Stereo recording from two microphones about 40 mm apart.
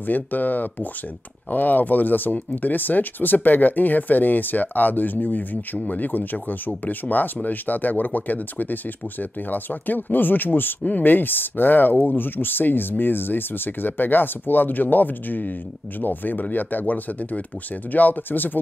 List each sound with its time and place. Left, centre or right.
0.0 s speech: left
10.8 s speech: left